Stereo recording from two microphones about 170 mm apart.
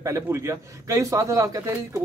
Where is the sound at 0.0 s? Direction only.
15° right (ahead or behind).